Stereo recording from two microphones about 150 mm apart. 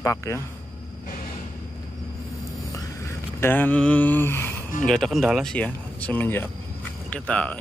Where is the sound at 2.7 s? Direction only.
20° left (ahead or behind).